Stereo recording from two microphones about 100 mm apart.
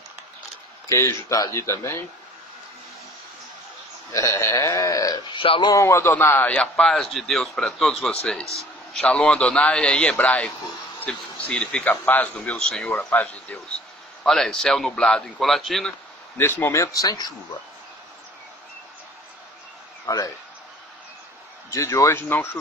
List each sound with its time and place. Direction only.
0.8 s speech: 25° left (ahead or behind)
4.1 s sheep: 30° left (ahead or behind)
5.3 s speech: 55° left (ahead or behind)
5.7 s a man's voice: 30° left (ahead or behind); by 13.7 s 15° left (ahead or behind)
14.2 s speech: 5° left (ahead or behind)
16.3 s speech: 25° left (ahead or behind)
20.1 s speech: 30° left (ahead or behind)
21.6 s speech: 30° left (ahead or behind)